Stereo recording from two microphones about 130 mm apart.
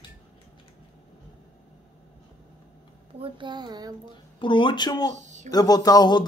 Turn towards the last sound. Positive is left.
turn(degrees=35)  # may be behind; listen again after turning